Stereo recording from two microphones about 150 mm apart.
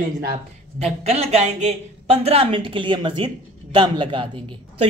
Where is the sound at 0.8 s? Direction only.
45° right (ahead or behind).